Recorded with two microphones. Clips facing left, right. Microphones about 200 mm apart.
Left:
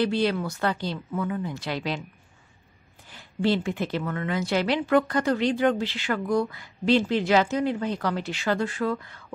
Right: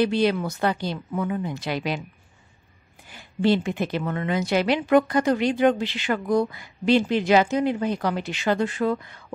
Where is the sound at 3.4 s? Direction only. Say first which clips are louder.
Right 3 dB; 15° right (ahead or behind).